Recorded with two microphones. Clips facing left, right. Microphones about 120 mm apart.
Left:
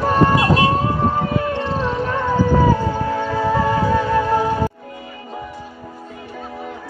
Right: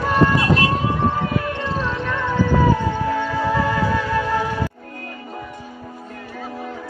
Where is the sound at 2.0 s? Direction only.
40° left (ahead or behind).